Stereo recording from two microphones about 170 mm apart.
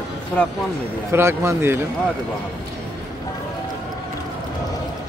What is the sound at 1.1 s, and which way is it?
Speech, 15° right (ahead or behind).